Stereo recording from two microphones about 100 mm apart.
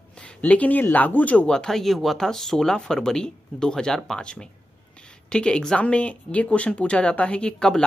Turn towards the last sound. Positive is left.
turn(degrees=5)  # may be behind; listen again after turning